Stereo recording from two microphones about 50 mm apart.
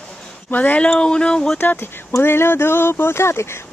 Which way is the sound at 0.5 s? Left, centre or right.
Left.